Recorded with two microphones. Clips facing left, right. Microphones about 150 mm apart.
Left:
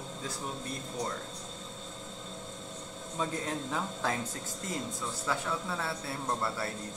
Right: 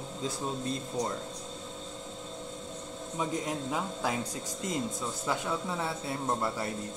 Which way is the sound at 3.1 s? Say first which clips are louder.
Right 1 dB; 10° right (ahead or behind).